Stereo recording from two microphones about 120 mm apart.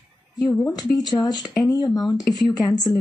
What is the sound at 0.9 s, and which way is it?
Speech, 30° left (ahead or behind).